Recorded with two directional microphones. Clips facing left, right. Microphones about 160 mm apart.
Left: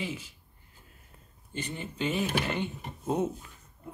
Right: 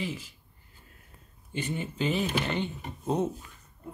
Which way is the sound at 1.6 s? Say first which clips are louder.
Right 3 dB; 5° right (ahead or behind).